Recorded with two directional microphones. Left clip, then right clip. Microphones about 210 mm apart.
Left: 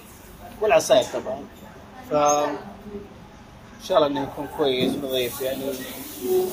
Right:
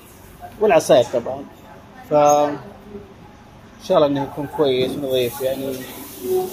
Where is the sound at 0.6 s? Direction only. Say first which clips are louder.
Right 4 dB; 25° right (ahead or behind).